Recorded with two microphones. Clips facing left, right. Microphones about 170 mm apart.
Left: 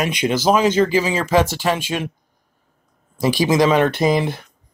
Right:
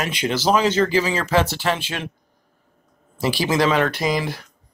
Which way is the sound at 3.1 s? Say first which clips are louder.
Left 4 dB; 15° left (ahead or behind).